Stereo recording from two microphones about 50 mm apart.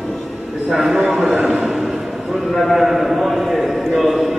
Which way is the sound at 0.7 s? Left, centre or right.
Centre.